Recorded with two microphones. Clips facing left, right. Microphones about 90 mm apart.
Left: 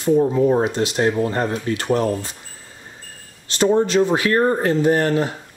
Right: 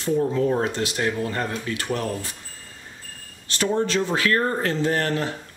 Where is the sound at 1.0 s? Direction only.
30° left (ahead or behind).